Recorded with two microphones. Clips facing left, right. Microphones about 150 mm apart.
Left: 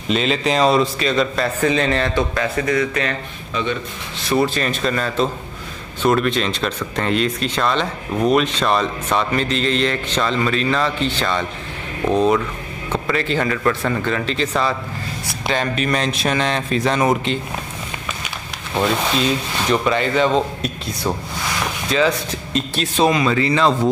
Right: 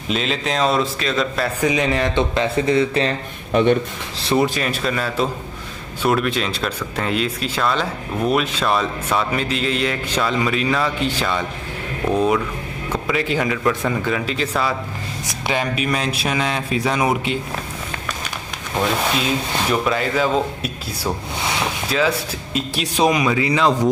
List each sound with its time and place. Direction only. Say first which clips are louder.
0.1 s speech: left 4 dB; centre (ahead or behind); by 3.2 s 30° right (ahead or behind)
3.5 s speech: right 8 dB; 55° right (ahead or behind)
4.6 s speech: left 1 dB; 5° right (ahead or behind)
18.8 s speech: left 2 dB; centre (ahead or behind)